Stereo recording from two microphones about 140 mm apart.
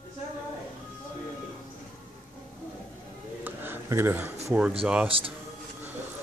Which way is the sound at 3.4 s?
15° right (ahead or behind).